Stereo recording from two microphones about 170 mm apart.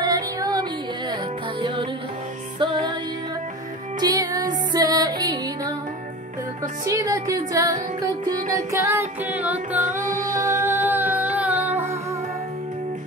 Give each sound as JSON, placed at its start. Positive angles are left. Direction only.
{"t": 0.0, "sound": "music", "side_deg": -25}
{"t": 2.6, "sound": "music", "side_deg": -30}
{"t": 4.0, "sound": "music", "side_deg": -20}
{"t": 6.9, "sound": "music", "side_deg": -20}
{"t": 9.8, "sound": "music", "side_deg": -50}
{"t": 10.4, "sound": "music", "side_deg": -15}